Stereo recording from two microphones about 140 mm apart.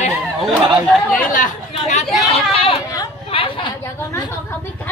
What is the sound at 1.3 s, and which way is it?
Chatter, 60° left (ahead or behind).